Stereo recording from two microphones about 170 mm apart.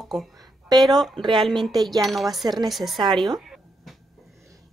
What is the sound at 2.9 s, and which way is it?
Speech, 25° right (ahead or behind).